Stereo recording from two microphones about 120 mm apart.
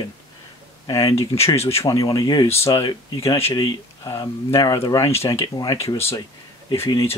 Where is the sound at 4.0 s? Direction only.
25° left (ahead or behind).